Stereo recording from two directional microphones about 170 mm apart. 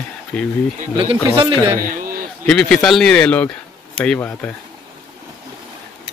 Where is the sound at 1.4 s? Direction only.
30° right (ahead or behind).